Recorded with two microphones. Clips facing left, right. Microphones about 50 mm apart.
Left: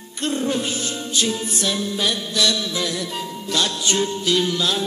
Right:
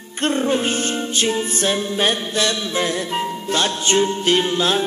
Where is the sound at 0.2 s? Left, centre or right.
Right.